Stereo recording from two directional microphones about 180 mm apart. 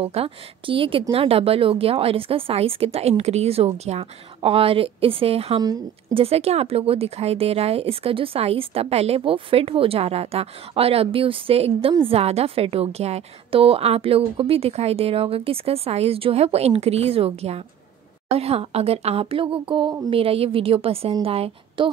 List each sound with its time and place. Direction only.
0.0 s a woman's voice: 35° right (ahead or behind)
5.6 s a woman's voice: 20° right (ahead or behind)
6.2 s a woman's voice: 35° right (ahead or behind)